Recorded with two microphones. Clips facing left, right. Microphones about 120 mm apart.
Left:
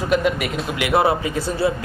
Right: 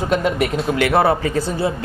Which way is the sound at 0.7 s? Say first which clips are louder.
Right 2 dB; 40° right (ahead or behind).